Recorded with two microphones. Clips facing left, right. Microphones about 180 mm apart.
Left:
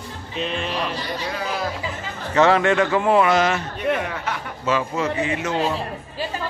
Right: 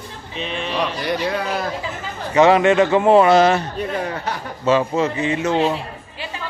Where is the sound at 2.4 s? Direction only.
15° right (ahead or behind).